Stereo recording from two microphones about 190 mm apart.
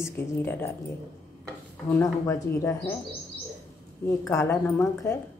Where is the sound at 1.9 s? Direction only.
15° left (ahead or behind).